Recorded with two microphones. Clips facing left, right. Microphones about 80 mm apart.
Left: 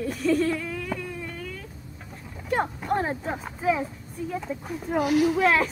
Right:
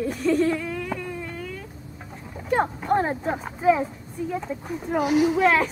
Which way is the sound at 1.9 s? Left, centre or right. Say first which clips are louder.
Right 3 dB; centre.